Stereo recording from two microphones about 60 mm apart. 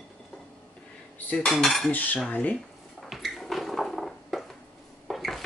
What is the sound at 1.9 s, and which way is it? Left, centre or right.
Speech, left.